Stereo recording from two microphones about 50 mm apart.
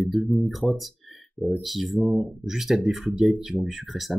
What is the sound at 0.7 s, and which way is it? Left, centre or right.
Speech, centre.